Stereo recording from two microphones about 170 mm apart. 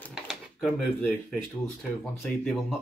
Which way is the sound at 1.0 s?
5° left (ahead or behind).